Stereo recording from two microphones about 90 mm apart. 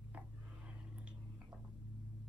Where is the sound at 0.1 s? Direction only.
15° right (ahead or behind).